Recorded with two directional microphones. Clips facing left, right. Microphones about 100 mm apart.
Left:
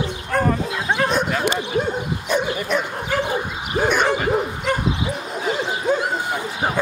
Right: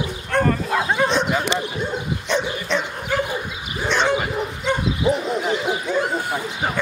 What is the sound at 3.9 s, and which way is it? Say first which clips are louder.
Dog: right 1 dB; 10° left (ahead or behind).